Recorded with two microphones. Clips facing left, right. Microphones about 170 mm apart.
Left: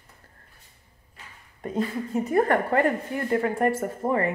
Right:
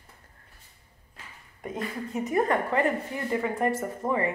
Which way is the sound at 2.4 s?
60° left (ahead or behind).